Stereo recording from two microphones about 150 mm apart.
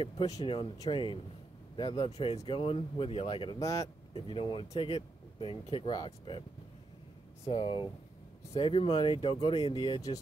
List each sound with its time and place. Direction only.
0.8 s speech: 35° left (ahead or behind)
3.5 s speech: 20° left (ahead or behind)
4.1 s speech: 35° left (ahead or behind)
7.4 s speech: 35° left (ahead or behind)